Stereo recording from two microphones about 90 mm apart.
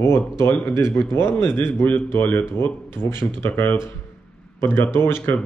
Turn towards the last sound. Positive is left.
turn(degrees=25)  # may be behind; listen again after turning